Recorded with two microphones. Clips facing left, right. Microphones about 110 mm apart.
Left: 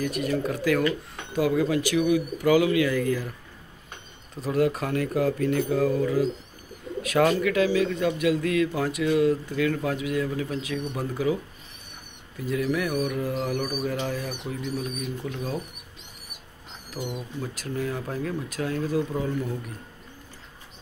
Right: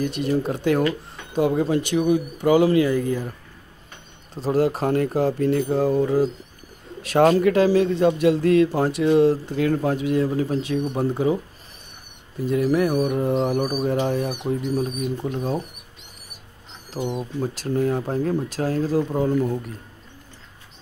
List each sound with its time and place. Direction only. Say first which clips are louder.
0.0 s speech: right 4 dB; 25° right (ahead or behind)
4.4 s speech: right 3 dB; 30° right (ahead or behind)
12.4 s speech: right 6 dB; 35° right (ahead or behind)
16.9 s speech: right 6 dB; 25° right (ahead or behind)